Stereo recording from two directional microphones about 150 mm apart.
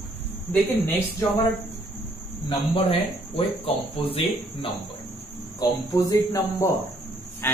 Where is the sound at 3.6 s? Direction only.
35° left (ahead or behind).